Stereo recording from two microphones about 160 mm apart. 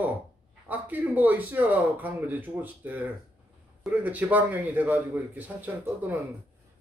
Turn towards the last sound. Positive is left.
turn(degrees=-10)  # may be behind; listen again after turning